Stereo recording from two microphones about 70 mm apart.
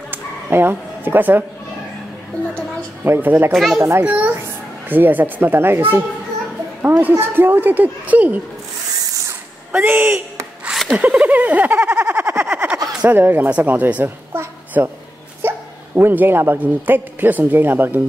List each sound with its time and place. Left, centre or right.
0.1 s a sound: right
3.0 s a woman's voice: right
3.5 s a child's voice: centre
4.0 s speech: right
9.8 s a woman's voice: right
10.9 s a sound: centre
13.0 s speech: right
14.8 s a woman's voice: right